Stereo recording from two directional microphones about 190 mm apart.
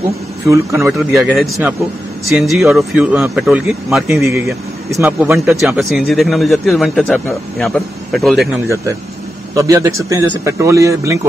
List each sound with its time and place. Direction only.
0.5 s speech: 15° right (ahead or behind)
1.1 s a man's voice: 5° right (ahead or behind)
5.6 s a man's voice: centre (ahead or behind)
9.6 s speech: 15° right (ahead or behind)